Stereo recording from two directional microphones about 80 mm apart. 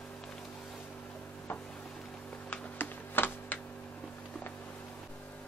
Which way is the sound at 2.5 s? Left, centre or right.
Left.